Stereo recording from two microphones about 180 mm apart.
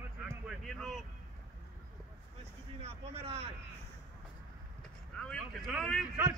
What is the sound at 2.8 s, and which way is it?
Speech, 35° right (ahead or behind).